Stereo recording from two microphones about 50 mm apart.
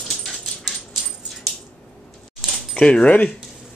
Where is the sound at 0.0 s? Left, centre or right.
Centre.